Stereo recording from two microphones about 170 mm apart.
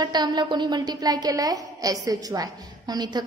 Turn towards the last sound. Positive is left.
turn(degrees=-25)  # may be behind; listen again after turning